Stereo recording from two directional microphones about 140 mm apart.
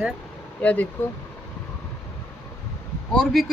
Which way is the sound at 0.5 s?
10° left (ahead or behind).